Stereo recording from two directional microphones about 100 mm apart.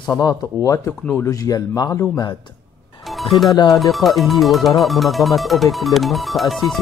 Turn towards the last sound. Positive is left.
turn(degrees=0)  # may be behind; listen again after turning